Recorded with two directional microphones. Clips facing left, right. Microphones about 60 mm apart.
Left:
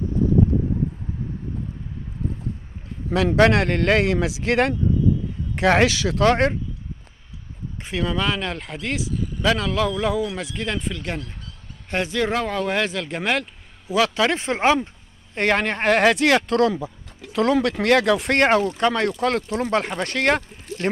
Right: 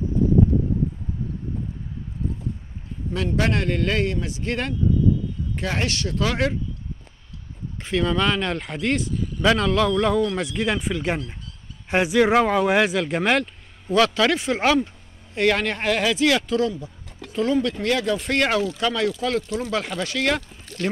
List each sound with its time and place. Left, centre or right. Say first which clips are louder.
3.1 s speech: left 7 dB; left
5.6 s speech: left 9 dB; left
6.2 s speech: left 6 dB; left
7.8 s speech: right 2 dB; centre
14.3 s speech: left 1 dB; left
17.3 s speech: left 2 dB; left
18.4 s speech: left 4 dB; left
20.8 s speech: left 2 dB; left